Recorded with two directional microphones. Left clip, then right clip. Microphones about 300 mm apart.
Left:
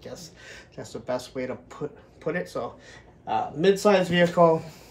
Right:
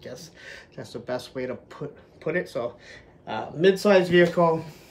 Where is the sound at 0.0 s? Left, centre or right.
Centre.